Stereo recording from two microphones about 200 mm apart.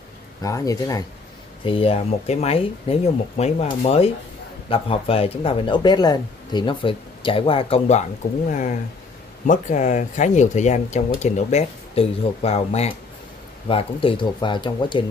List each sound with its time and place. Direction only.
0.4 s speech: 15° left (ahead or behind)
1.6 s speech: 25° left (ahead or behind)